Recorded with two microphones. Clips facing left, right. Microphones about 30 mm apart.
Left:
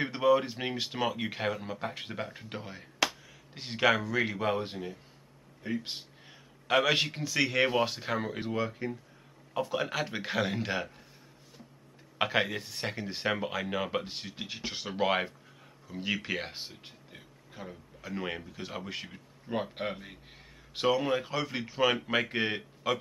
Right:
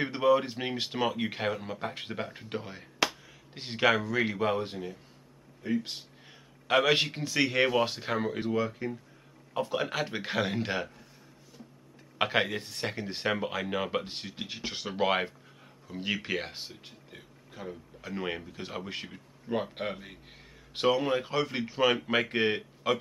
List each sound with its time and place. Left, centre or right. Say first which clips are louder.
0.0 s speech: right 1 dB; centre
12.2 s a man's voice: right 1 dB; centre